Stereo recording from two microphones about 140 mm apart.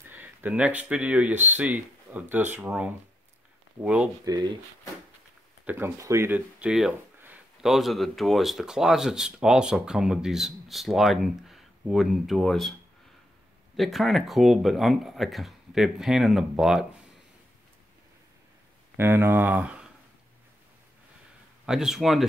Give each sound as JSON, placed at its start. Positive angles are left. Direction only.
{"t": 0.1, "sound": "speech", "side_deg": -15}
{"t": 4.2, "sound": "speech", "side_deg": -25}
{"t": 5.7, "sound": "speech", "side_deg": -15}
{"t": 13.7, "sound": "speech", "side_deg": 0}
{"t": 18.9, "sound": "speech", "side_deg": -15}
{"t": 21.6, "sound": "speech", "side_deg": -5}